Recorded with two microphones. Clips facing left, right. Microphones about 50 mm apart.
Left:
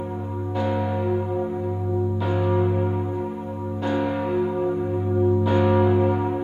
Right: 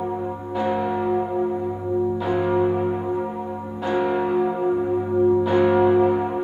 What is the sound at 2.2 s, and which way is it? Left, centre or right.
Church bell, centre.